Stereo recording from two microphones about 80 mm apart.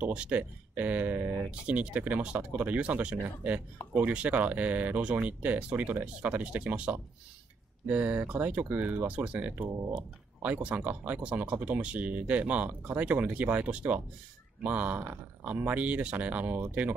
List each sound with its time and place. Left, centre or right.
0.0 s speech: centre